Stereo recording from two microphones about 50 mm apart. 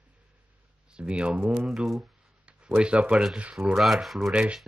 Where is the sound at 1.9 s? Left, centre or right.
Right.